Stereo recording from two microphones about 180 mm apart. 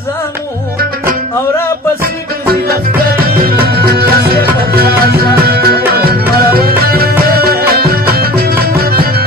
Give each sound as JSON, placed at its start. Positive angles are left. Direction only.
{"t": 2.4, "sound": "music", "side_deg": -55}